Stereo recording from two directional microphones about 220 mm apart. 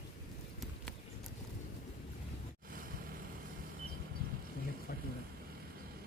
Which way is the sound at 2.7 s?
40° right (ahead or behind).